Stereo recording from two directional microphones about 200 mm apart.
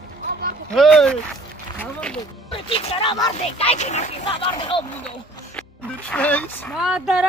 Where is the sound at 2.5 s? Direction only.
30° left (ahead or behind).